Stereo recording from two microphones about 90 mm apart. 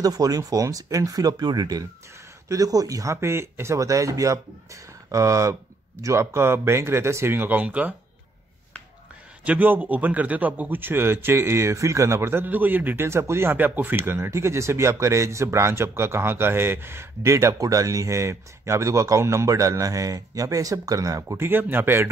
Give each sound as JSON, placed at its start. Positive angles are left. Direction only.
{"t": 0.0, "sound": "a man's voice", "side_deg": -45}
{"t": 9.4, "sound": "a man's voice", "side_deg": -15}
{"t": 21.5, "sound": "a man's voice", "side_deg": -25}